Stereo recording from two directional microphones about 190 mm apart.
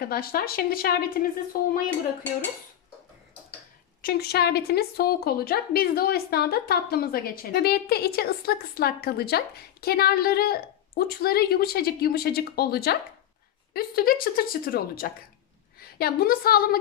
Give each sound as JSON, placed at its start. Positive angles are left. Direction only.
{"t": 0.0, "sound": "a woman's voice", "side_deg": 50}
{"t": 4.0, "sound": "a woman's voice", "side_deg": 55}